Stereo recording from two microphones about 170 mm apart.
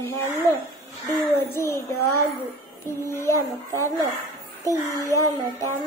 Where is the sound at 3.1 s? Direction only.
15° left (ahead or behind).